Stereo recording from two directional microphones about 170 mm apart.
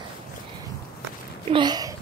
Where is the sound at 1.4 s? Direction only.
25° right (ahead or behind).